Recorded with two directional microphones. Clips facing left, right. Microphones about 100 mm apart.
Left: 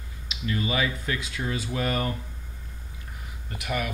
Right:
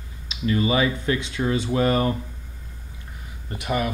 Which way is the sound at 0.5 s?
10° right (ahead or behind).